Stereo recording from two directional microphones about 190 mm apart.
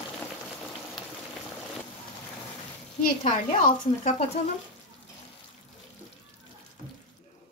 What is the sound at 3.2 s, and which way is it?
Speech, 35° left (ahead or behind).